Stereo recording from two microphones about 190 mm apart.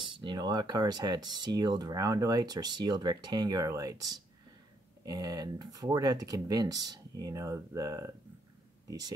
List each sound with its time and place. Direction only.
0.2 s speech: 20° right (ahead or behind)